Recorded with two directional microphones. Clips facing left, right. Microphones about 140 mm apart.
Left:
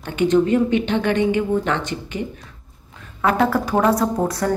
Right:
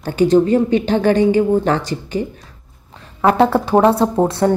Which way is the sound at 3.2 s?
30° right (ahead or behind).